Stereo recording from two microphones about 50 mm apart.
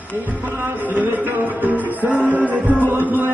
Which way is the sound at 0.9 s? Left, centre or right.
Right.